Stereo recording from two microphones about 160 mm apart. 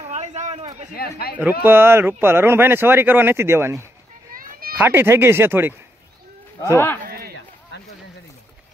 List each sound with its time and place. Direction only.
0.0 s a sound: 45° right (ahead or behind)
0.9 s speech: 75° left (ahead or behind)
1.6 s speech: 15° right (ahead or behind)
4.3 s children playing: 60° right (ahead or behind)
4.7 s speech: 15° right (ahead or behind)
6.7 s speech: 15° left (ahead or behind)
7.1 s run: 75° right (ahead or behind)
7.7 s a sound: 90° left